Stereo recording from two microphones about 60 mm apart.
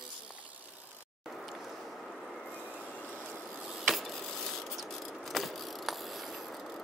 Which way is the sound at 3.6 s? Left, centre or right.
Centre.